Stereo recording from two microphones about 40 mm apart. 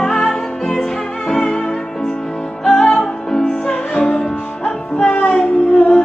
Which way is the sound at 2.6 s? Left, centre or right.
Centre.